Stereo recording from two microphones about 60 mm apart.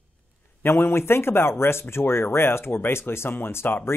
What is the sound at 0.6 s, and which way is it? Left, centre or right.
Speech, left.